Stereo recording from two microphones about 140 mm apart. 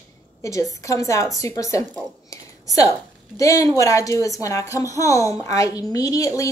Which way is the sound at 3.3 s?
25° left (ahead or behind).